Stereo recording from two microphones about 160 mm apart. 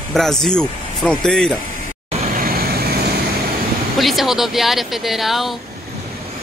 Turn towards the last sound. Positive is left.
turn(degrees=0)  # may be behind; listen again after turning